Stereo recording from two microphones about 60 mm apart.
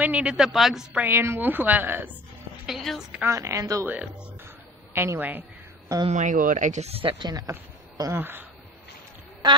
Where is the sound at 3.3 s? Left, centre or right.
Right.